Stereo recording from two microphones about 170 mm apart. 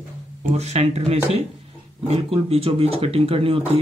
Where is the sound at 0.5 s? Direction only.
40° right (ahead or behind).